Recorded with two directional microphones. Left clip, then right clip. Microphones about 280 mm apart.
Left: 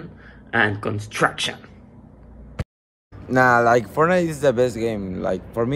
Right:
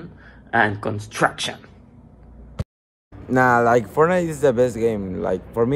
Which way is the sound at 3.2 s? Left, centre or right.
Centre.